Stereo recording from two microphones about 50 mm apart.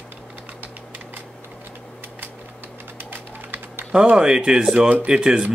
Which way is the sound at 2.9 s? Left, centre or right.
Right.